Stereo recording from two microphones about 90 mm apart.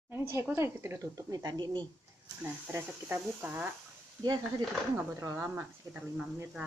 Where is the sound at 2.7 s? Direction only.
25° right (ahead or behind).